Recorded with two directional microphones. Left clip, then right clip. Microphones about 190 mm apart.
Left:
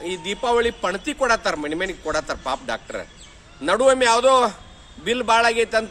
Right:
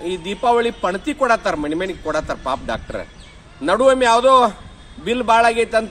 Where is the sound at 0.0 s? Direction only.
15° left (ahead or behind).